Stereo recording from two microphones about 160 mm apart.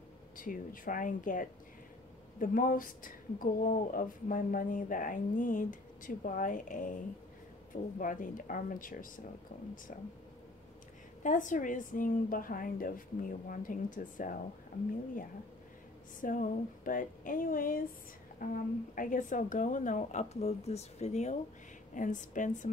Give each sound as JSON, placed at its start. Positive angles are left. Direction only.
{"t": 0.4, "sound": "speech", "side_deg": 60}
{"t": 11.2, "sound": "speech", "side_deg": 55}
{"t": 16.2, "sound": "a woman's voice", "side_deg": 55}